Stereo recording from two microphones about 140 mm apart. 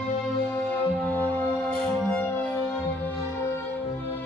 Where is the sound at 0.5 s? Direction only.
15° left (ahead or behind).